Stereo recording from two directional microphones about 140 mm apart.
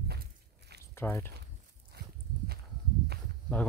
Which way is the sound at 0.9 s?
15° left (ahead or behind).